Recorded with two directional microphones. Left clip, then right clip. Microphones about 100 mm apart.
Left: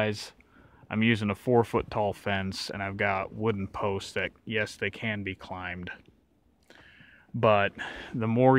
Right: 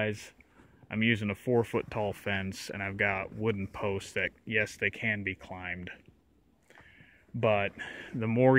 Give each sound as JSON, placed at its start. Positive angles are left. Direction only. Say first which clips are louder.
{"t": 0.8, "sound": "speech", "louder": "left 2 dB", "side_deg": 50}
{"t": 1.9, "sound": "speech", "louder": "left 4 dB", "side_deg": 30}
{"t": 7.3, "sound": "speech", "louder": "left 5 dB", "side_deg": 65}
{"t": 8.1, "sound": "speech", "louder": "left 2 dB", "side_deg": 35}